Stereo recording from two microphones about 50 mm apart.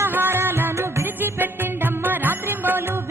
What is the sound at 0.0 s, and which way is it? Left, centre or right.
Music, right.